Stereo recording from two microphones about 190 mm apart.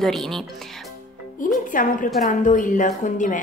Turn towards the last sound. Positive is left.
turn(degrees=40)  # may be behind; listen again after turning